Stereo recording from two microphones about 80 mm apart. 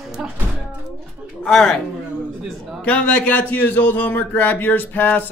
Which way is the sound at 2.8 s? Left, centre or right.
Centre.